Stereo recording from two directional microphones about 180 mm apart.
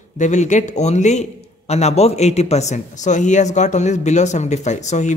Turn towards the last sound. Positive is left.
turn(degrees=40)  # may be behind; listen again after turning